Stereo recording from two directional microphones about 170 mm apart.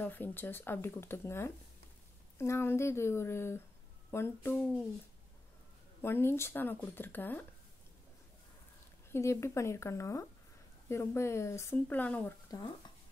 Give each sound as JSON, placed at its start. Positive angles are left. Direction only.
{"t": 0.0, "sound": "speech", "side_deg": 10}
{"t": 6.0, "sound": "speech", "side_deg": 15}
{"t": 9.1, "sound": "speech", "side_deg": 15}